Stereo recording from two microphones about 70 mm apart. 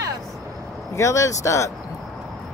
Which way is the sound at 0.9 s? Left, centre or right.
Left.